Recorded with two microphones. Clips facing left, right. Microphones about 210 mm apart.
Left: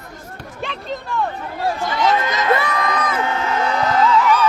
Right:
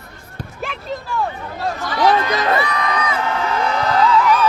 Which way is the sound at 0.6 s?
5° right (ahead or behind).